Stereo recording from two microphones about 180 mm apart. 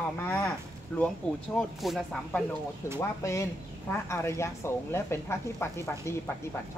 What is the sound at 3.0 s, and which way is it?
Speech, 15° left (ahead or behind).